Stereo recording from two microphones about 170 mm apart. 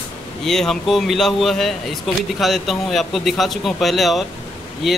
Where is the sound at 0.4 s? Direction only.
Centre (ahead or behind).